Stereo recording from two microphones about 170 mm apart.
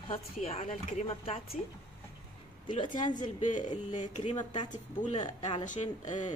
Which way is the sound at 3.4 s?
45° left (ahead or behind).